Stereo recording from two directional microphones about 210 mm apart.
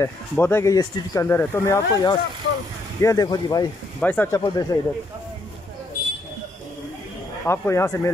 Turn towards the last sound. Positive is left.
turn(degrees=15)  # may be behind; listen again after turning